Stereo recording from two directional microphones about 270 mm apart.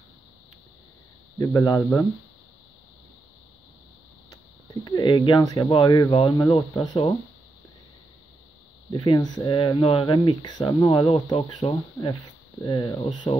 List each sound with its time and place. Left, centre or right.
1.4 s speech: centre
4.8 s speech: centre
8.9 s speech: centre